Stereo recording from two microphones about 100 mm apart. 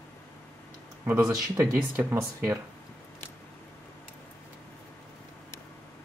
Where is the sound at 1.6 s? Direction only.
20° right (ahead or behind).